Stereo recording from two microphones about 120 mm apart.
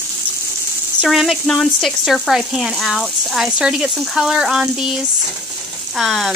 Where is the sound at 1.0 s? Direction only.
Centre (ahead or behind).